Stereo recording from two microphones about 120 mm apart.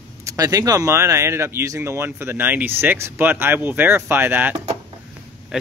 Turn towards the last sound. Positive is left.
turn(degrees=-15)  # may be behind; listen again after turning